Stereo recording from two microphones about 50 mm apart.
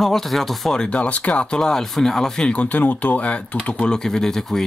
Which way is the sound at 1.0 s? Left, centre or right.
Left.